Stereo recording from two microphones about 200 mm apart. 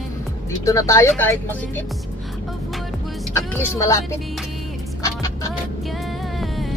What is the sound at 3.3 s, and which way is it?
Speech, 15° left (ahead or behind).